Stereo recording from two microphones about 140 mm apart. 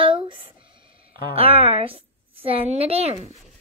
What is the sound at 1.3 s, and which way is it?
A woman's voice, 45° right (ahead or behind).